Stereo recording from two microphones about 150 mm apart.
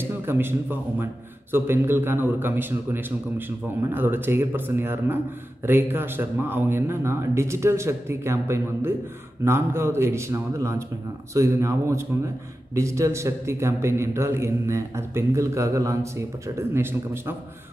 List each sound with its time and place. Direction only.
0.0 s a man's voice: 15° right (ahead or behind)